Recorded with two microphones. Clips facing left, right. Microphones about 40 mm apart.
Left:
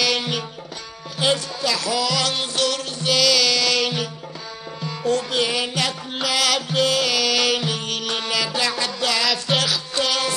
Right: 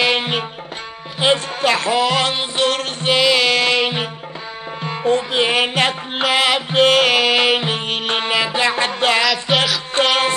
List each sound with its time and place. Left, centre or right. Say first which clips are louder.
0.0 s music: right 5 dB; right
9.5 s music: right 4 dB; right
9.9 s music: right 7 dB; right